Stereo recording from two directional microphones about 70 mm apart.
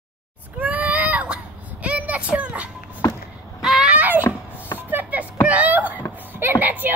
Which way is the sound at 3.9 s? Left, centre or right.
Right.